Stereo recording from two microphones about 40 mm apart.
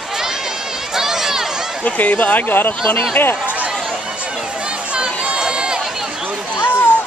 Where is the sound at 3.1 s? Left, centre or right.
Left.